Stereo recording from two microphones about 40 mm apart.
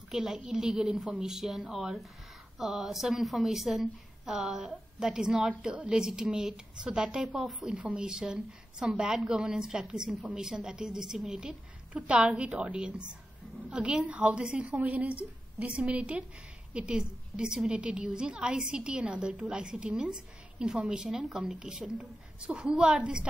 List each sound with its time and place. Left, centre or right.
0.1 s a woman's voice: right
2.6 s a woman's voice: centre
17.7 s a woman's voice: right
19.3 s a woman's voice: right
19.6 s a woman's voice: right